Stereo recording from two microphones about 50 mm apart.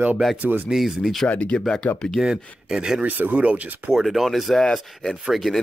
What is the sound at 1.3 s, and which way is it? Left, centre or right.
Speech, left.